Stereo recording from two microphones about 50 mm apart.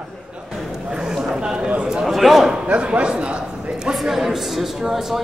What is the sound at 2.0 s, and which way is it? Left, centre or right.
Speech, centre.